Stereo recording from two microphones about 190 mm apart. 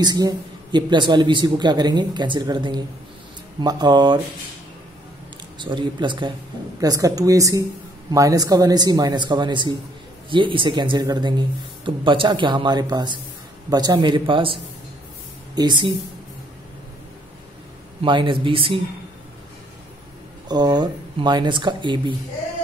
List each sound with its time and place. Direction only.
0.0 s speech: 20° right (ahead or behind)
5.6 s a woman's voice: 25° right (ahead or behind)
18.0 s speech: 25° right (ahead or behind)
20.4 s speech: 20° right (ahead or behind)